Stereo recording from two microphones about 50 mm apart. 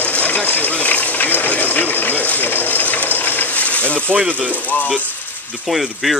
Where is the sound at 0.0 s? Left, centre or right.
Left.